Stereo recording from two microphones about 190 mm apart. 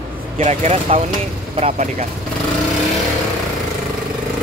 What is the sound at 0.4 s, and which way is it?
Speech, 35° right (ahead or behind).